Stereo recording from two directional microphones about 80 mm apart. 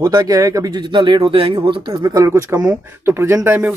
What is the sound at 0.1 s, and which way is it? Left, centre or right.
Speech, right.